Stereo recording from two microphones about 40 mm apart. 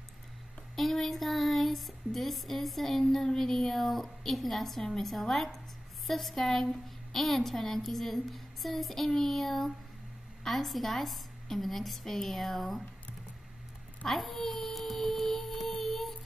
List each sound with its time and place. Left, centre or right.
0.7 s a sound: centre
3.3 s a woman's voice: centre
14.0 s music: centre